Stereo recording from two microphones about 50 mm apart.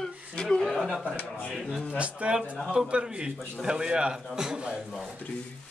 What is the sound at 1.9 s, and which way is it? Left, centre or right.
A man's voice, right.